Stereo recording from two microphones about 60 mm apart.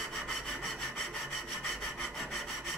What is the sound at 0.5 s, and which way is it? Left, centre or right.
Wood, centre.